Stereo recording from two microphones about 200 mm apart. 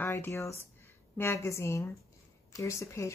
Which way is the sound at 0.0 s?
10° left (ahead or behind).